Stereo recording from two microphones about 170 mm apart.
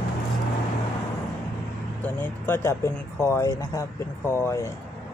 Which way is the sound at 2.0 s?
15° left (ahead or behind).